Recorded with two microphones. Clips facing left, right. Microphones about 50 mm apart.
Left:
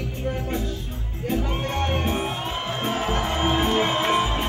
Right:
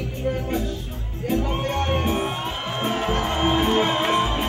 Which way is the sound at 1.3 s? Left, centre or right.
Centre.